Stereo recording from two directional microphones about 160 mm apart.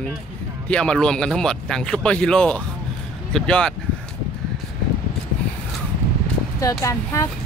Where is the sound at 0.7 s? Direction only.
5° left (ahead or behind).